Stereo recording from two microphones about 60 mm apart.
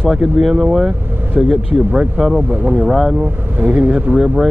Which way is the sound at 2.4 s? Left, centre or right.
Right.